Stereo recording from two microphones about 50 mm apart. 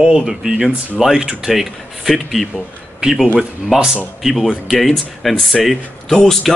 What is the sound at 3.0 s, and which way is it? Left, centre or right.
Speech, centre.